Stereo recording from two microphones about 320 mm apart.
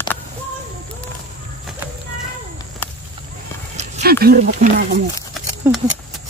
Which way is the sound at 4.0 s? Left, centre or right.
Right.